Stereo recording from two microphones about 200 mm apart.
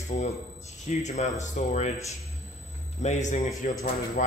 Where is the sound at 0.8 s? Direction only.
35° left (ahead or behind).